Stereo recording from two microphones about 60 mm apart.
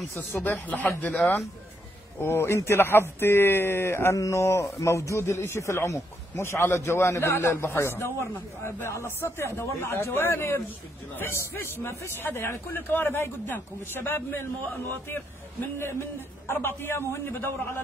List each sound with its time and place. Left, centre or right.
0.2 s speech: left
2.2 s a man's voice: left
4.2 s a man's voice: left
15.8 s a man's voice: left